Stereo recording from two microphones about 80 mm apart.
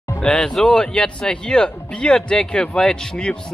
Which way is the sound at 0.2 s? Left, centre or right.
Centre.